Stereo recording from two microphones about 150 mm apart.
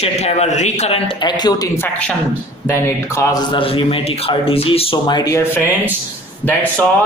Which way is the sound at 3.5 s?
35° left (ahead or behind).